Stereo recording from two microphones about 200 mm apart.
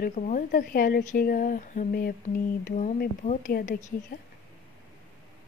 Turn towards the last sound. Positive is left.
turn(degrees=50)  # may be behind; listen again after turning